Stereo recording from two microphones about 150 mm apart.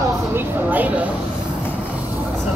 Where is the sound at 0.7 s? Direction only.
10° right (ahead or behind).